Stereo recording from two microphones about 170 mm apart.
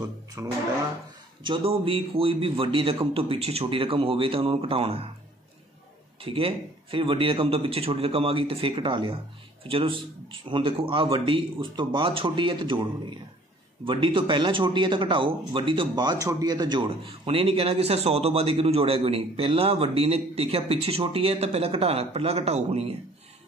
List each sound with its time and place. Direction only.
0.4 s bathtub: 15° right (ahead or behind)
1.4 s speech: 30° right (ahead or behind)
6.2 s speech: 30° right (ahead or behind)
13.8 s speech: 30° right (ahead or behind)